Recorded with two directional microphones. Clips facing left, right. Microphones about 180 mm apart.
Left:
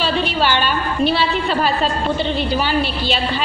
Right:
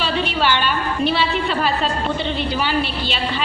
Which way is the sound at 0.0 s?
35° left (ahead or behind).